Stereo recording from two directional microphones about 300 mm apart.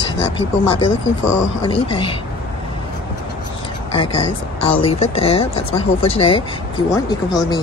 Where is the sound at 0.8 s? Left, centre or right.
Left.